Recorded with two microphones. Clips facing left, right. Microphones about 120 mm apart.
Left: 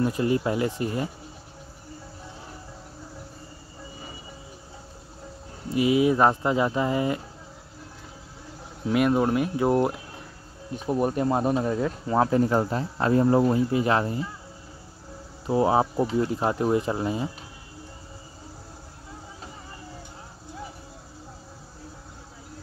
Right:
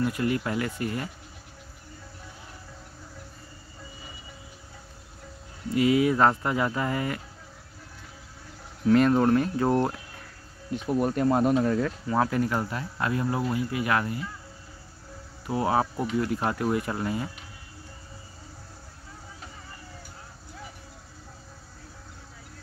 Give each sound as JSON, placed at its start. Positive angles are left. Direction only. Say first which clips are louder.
{"t": 0.0, "sound": "speech", "louder": "left 3 dB", "side_deg": 25}
{"t": 5.7, "sound": "speech", "louder": "left 1 dB", "side_deg": 20}
{"t": 8.9, "sound": "speech", "louder": "right 1 dB", "side_deg": 10}
{"t": 15.4, "sound": "speech", "louder": "left 4 dB", "side_deg": 25}